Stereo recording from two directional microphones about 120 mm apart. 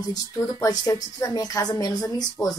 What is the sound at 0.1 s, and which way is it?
A woman's voice, 30° left (ahead or behind).